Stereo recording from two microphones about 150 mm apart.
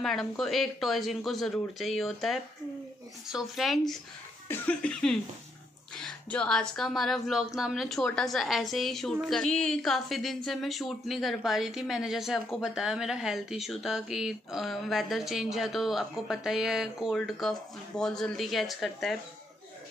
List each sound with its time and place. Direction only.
0.0 s speech: centre (ahead or behind)